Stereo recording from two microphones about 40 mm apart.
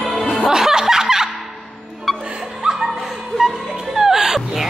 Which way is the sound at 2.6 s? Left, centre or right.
Centre.